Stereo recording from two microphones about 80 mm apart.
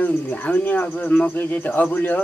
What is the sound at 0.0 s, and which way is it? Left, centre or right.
A man's voice, centre.